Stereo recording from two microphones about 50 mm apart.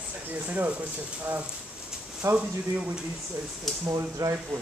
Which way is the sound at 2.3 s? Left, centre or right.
Right.